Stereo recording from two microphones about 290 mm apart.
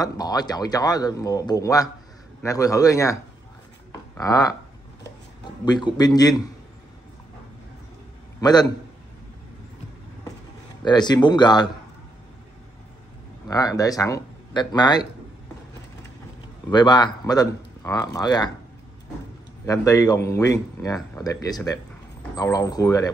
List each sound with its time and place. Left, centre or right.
0.0 s speech: centre
3.9 s a sound: centre
5.7 s speech: centre
8.4 s speech: centre
10.9 s speech: centre
13.5 s speech: centre
16.6 s speech: centre
19.6 s speech: centre